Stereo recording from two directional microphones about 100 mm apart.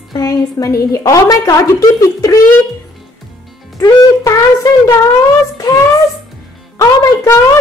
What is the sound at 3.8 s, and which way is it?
Speech, 35° left (ahead or behind).